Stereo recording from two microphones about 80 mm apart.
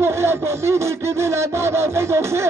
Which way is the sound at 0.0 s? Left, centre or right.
Right.